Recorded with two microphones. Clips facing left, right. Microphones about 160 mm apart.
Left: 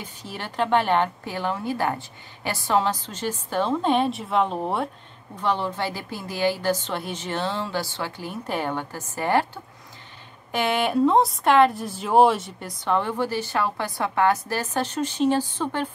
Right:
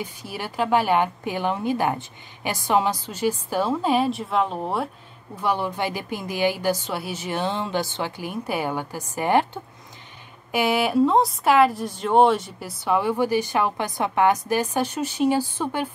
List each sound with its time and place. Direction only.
0.0 s speech: 10° right (ahead or behind)
5.4 s speech: 10° right (ahead or behind)